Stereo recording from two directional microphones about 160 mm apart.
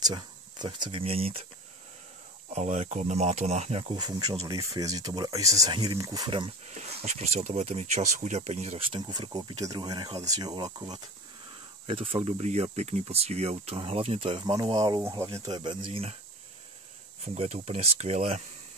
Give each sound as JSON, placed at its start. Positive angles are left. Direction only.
{"t": 0.0, "sound": "speech", "side_deg": -30}
{"t": 2.5, "sound": "speech", "side_deg": -45}
{"t": 3.9, "sound": "speech", "side_deg": -25}
{"t": 6.7, "sound": "speech", "side_deg": -45}
{"t": 17.2, "sound": "speech", "side_deg": -45}